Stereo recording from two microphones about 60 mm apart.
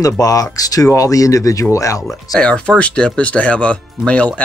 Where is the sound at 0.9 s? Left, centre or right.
Left.